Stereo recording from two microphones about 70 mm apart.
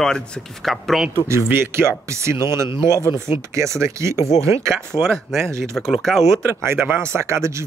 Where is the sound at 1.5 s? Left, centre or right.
Right.